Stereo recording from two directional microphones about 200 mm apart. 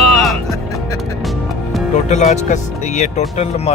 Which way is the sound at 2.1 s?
35° left (ahead or behind).